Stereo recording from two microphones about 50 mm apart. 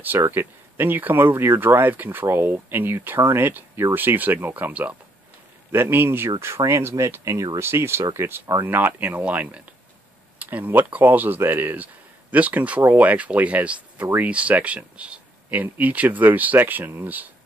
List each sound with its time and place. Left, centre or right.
0.3 s speech: right
5.7 s speech: right
8.3 s speech: right
9.2 s speech: right
14.0 s speech: right
14.3 s speech: right
15.5 s speech: right